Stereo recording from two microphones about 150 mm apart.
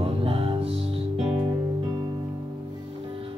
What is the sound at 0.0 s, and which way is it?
Music, 40° right (ahead or behind).